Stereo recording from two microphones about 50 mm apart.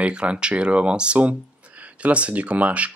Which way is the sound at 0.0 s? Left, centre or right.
Right.